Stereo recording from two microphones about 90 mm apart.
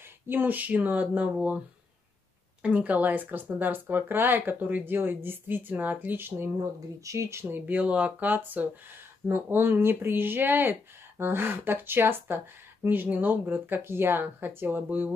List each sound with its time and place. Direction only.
0.3 s speech: 20° right (ahead or behind)
2.6 s speech: 15° right (ahead or behind)
6.6 s speech: 35° right (ahead or behind)